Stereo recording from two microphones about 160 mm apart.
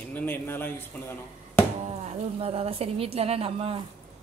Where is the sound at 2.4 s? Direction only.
40° right (ahead or behind).